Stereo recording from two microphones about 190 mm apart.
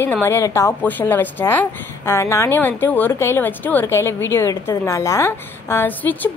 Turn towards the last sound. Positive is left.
turn(degrees=10)  # may be behind; listen again after turning